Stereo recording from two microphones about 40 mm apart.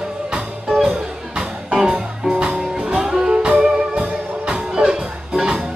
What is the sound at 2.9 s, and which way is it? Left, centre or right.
Music, centre.